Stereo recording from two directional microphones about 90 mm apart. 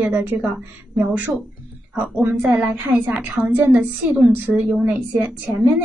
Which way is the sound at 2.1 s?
20° right (ahead or behind).